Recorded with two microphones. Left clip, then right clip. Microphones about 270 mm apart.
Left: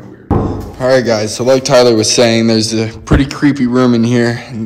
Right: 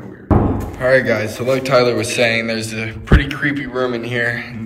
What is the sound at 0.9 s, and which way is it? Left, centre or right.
A man's voice, centre.